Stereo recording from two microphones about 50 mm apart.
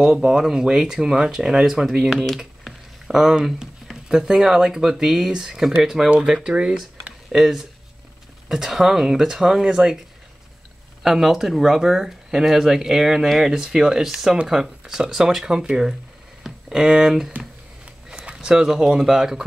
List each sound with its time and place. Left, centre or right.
0.0 s speech: centre
2.0 s speech: centre
3.1 s speech: centre
7.3 s speech: centre
11.0 s speech: centre
17.8 s a sound: centre
18.9 s speech: centre